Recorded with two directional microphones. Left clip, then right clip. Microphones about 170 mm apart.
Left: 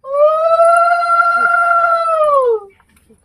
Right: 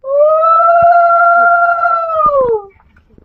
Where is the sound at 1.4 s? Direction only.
Centre (ahead or behind).